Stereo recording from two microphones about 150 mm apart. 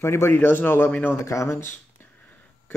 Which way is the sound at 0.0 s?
15° left (ahead or behind).